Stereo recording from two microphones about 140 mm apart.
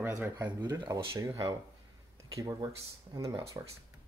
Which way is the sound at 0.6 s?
30° right (ahead or behind).